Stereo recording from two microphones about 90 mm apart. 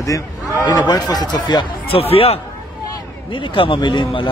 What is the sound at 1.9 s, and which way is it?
Speech, 90° left.